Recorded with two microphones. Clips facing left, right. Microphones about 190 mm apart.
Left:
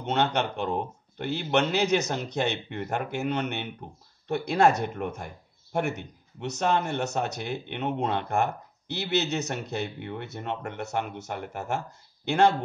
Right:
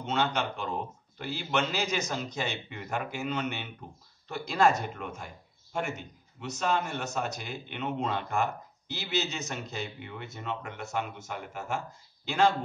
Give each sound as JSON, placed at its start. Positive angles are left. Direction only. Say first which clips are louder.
{"t": 0.0, "sound": "speech", "louder": "left 4 dB", "side_deg": 60}
{"t": 12.3, "sound": "speech", "louder": "left 4 dB", "side_deg": 65}